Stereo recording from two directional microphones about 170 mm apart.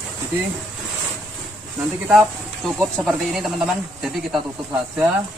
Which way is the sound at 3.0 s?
Centre (ahead or behind).